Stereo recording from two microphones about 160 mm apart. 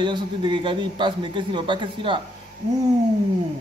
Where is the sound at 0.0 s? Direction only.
30° right (ahead or behind).